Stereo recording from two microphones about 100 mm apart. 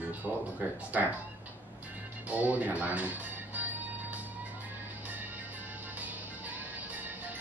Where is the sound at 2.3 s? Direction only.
15° right (ahead or behind).